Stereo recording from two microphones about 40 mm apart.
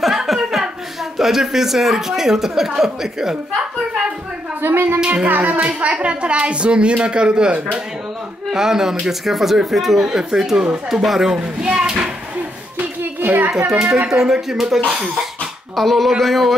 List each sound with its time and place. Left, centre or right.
0.0 s chuckle: centre
1.1 s speech: centre
4.6 s speech: right
5.0 s music: right
5.3 s speech: right
7.5 s music: right
8.5 s speech: centre
11.3 s speech: right
11.8 s a sound: centre
13.0 s a sound: right
13.9 s speech: centre
15.7 s speech: centre